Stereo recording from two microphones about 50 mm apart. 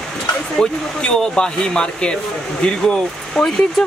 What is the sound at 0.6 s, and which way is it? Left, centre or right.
Speech, centre.